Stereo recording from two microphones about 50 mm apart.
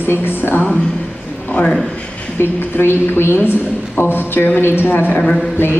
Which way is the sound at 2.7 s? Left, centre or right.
Left.